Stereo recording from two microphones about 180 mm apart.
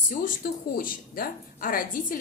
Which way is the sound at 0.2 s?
50° left (ahead or behind).